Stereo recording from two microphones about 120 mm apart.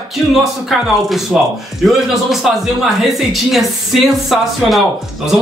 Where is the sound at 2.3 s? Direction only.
Centre (ahead or behind).